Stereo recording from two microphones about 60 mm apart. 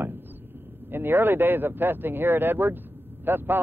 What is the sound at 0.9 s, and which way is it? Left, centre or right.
Speech, right.